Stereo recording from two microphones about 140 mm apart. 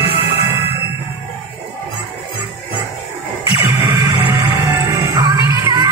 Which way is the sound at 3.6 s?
25° right (ahead or behind).